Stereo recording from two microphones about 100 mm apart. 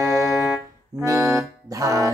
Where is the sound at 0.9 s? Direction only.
35° right (ahead or behind).